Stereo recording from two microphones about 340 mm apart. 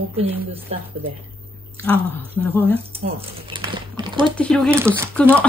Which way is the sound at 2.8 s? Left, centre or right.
Centre.